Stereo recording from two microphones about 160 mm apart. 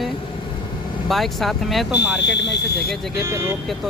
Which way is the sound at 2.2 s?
90° left.